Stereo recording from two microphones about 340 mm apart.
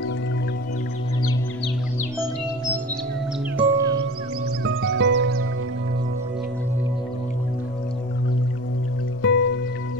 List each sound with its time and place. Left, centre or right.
3.5 s music: centre
4.6 s music: right
9.2 s music: left